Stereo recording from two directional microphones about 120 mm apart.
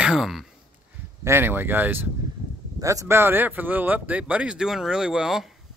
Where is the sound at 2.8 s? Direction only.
25° right (ahead or behind); by 5.5 s 5° right (ahead or behind).